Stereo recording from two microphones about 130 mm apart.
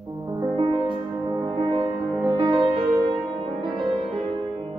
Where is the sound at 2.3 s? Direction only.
30° right (ahead or behind).